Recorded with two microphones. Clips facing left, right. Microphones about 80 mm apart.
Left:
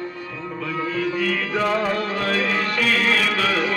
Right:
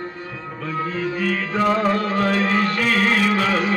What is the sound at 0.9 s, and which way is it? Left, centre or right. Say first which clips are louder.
Music: left 1 dB; right.